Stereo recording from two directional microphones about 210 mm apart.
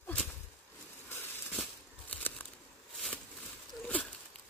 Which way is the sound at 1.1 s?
10° left (ahead or behind).